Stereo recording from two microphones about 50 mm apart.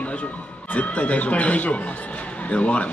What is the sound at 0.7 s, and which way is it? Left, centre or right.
A man's voice, left.